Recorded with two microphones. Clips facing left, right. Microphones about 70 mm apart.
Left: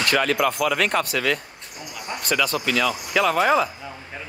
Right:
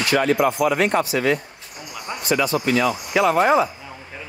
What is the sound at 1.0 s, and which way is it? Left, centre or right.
Speech, left.